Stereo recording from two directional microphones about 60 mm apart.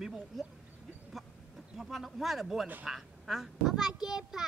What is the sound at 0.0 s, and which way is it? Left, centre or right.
Speech, centre.